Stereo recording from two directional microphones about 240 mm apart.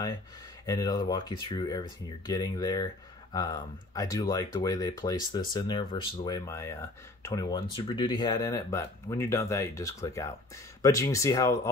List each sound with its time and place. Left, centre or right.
0.7 s speech: centre